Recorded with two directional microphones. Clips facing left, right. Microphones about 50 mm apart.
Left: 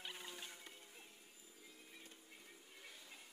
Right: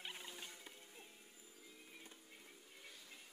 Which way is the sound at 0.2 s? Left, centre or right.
Centre.